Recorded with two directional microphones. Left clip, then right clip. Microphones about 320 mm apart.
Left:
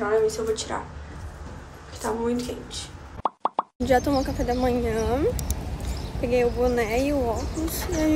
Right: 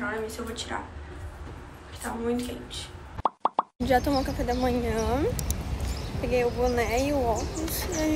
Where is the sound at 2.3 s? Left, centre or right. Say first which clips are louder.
Left 2 dB; centre.